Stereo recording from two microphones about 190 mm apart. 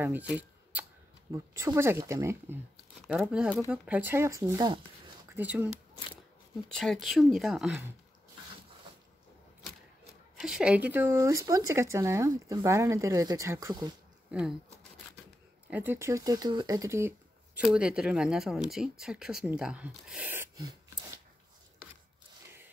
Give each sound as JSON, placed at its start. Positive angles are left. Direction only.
{"t": 0.0, "sound": "speech", "side_deg": -10}
{"t": 6.7, "sound": "speech", "side_deg": 0}
{"t": 10.4, "sound": "speech", "side_deg": -5}
{"t": 14.3, "sound": "speech", "side_deg": -5}
{"t": 17.7, "sound": "speech", "side_deg": -5}